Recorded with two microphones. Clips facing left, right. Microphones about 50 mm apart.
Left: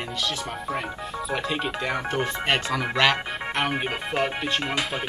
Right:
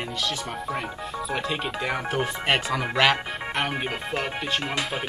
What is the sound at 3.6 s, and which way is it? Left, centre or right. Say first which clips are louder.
Speech: left 2 dB; centre.